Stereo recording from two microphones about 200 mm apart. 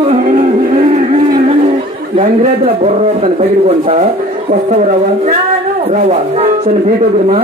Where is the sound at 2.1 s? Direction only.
35° right (ahead or behind).